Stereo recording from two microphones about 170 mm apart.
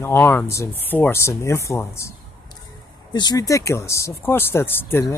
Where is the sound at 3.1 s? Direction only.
25° left (ahead or behind).